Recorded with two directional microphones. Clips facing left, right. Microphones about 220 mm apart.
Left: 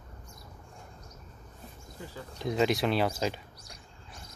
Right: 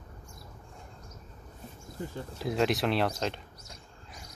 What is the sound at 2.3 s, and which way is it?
Speech, centre (ahead or behind).